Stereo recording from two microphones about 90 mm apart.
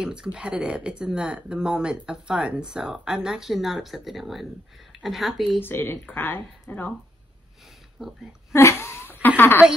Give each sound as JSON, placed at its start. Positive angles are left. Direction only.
{"t": 0.0, "sound": "speech", "side_deg": -10}
{"t": 5.6, "sound": "speech", "side_deg": 25}
{"t": 8.0, "sound": "speech", "side_deg": -5}
{"t": 8.5, "sound": "a sound", "side_deg": 30}
{"t": 9.4, "sound": "speech", "side_deg": 25}